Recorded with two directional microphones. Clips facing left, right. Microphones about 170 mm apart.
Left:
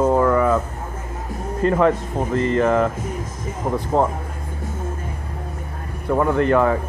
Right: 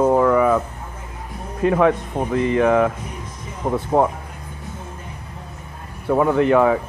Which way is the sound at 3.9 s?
10° right (ahead or behind).